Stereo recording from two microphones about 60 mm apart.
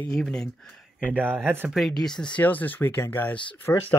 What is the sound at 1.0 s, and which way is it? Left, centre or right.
Speech, right.